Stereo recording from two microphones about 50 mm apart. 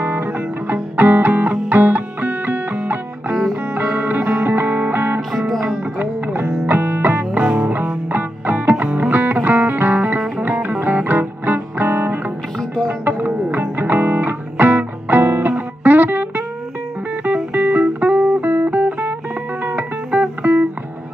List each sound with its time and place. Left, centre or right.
0.0 s music: right
17.5 s music: right